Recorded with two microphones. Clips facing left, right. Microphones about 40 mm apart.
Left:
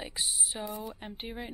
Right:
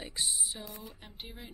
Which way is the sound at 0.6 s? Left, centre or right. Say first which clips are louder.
Left 8 dB; left.